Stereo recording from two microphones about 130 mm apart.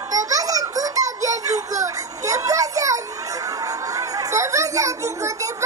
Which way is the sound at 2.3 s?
25° right (ahead or behind).